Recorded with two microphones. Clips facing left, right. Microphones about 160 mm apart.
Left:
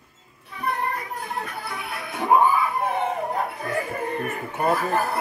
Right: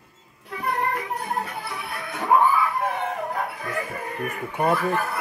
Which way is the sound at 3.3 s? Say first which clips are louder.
Left 2 dB; 30° left (ahead or behind).